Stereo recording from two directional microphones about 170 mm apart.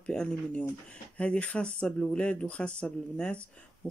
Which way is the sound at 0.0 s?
5° left (ahead or behind).